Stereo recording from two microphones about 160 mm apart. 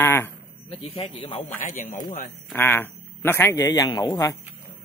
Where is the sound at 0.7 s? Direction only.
40° left (ahead or behind).